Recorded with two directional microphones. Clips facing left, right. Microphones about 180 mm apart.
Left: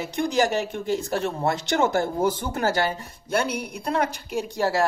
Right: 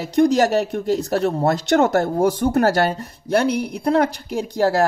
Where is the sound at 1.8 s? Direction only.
65° right (ahead or behind).